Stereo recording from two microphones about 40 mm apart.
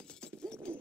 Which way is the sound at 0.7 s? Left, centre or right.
Left.